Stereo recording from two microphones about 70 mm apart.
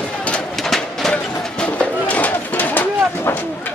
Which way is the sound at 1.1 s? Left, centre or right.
Centre.